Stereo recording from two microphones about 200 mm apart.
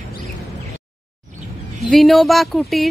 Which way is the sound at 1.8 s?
Centre (ahead or behind).